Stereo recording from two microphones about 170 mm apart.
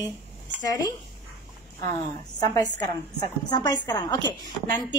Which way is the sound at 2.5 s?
20° left (ahead or behind).